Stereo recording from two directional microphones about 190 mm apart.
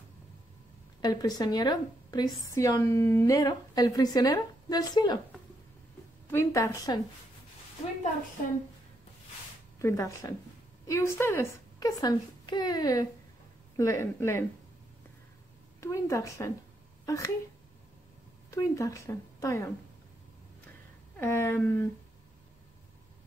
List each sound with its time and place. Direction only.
1.0 s a woman's voice: 20° left (ahead or behind)
6.3 s speech: 15° left (ahead or behind)
9.8 s a woman's voice: 15° left (ahead or behind)
15.8 s speech: 15° left (ahead or behind)
18.5 s speech: 15° left (ahead or behind)
21.2 s speech: 10° left (ahead or behind)